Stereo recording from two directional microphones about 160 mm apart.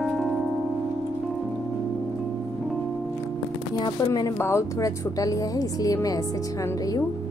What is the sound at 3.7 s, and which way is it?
Speech, 30° left (ahead or behind).